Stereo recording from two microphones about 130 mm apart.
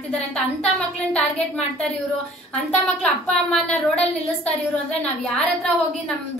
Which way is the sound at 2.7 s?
5° left (ahead or behind).